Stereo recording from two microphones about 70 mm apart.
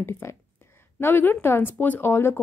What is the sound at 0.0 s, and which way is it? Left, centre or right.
A woman's voice, left.